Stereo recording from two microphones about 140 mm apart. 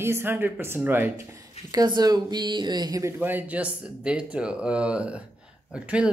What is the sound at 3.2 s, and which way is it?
Speech, 15° right (ahead or behind).